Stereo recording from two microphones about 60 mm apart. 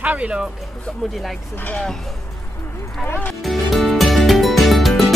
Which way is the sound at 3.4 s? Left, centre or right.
Centre.